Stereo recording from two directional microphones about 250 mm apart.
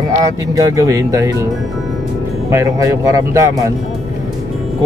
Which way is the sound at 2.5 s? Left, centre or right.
Centre.